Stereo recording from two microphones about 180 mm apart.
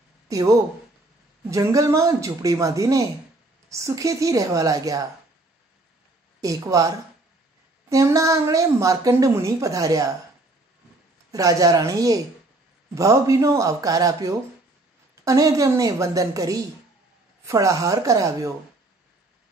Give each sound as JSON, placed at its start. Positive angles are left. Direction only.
{"t": 0.3, "sound": "speech", "side_deg": -20}
{"t": 6.4, "sound": "speech", "side_deg": -20}
{"t": 7.9, "sound": "a woman's voice", "side_deg": -20}
{"t": 11.3, "sound": "a woman's voice", "side_deg": -20}